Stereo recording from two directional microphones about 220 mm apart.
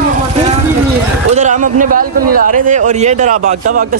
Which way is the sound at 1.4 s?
35° right (ahead or behind).